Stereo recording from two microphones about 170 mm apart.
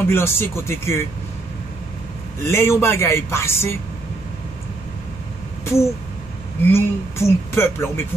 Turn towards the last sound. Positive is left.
turn(degrees=15)  # may be behind; listen again after turning